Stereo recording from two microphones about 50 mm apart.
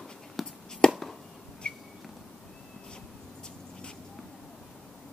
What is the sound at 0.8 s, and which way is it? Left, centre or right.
Chop, centre.